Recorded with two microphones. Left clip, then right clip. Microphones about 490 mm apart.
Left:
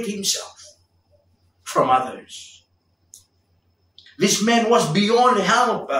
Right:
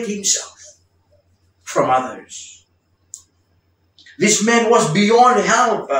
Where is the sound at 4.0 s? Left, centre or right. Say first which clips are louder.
Right 4 dB; left.